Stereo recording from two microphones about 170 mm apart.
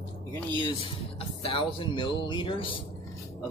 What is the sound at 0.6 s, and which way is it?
Speech, 30° left (ahead or behind).